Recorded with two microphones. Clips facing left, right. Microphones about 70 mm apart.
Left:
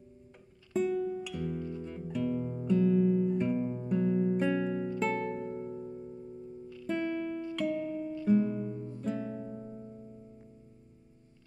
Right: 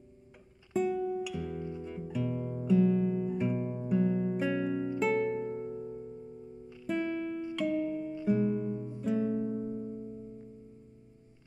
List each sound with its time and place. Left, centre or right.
0.7 s music: centre
1.6 s music: centre
1.9 s music: centre